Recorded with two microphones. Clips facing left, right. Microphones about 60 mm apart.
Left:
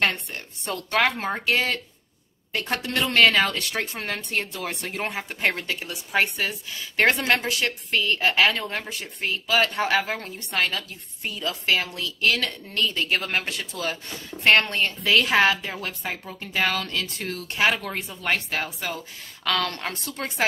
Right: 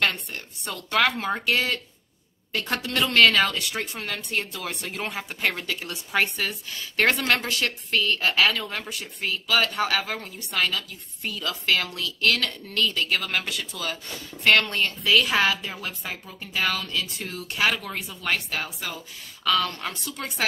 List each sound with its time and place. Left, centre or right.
0.9 s a woman's voice: left
3.5 s a woman's voice: left
4.0 s a woman's voice: left
5.8 s speech: centre
7.0 s a woman's voice: left
11.2 s a woman's voice: left
17.6 s a woman's voice: left
19.4 s a woman's voice: left